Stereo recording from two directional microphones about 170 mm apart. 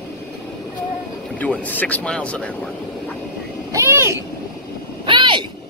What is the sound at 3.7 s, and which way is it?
Speech, 15° right (ahead or behind).